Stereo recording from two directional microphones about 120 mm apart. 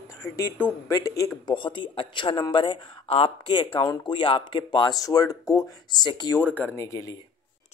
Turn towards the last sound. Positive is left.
turn(degrees=25)  # may be behind; listen again after turning